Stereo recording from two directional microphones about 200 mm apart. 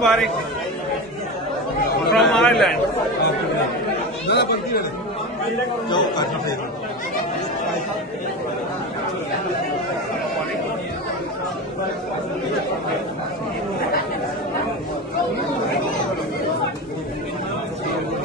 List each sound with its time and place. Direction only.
0.0 s a man's voice: centre (ahead or behind)
2.1 s speech: centre (ahead or behind)
4.3 s speech: 55° left (ahead or behind)
5.9 s speech: 20° left (ahead or behind)